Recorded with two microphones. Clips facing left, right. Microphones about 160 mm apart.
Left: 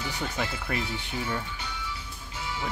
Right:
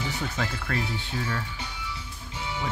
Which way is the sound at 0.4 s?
15° left (ahead or behind).